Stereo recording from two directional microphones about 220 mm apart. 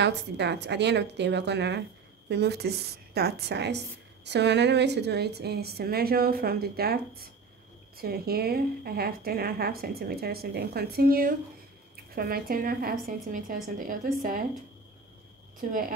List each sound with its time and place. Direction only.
0.0 s a woman's voice: 50° right (ahead or behind)